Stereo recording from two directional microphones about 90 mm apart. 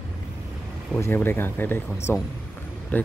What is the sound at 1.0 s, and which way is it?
Speech, 25° left (ahead or behind).